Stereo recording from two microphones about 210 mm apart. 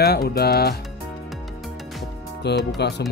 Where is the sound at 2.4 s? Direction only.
50° left (ahead or behind).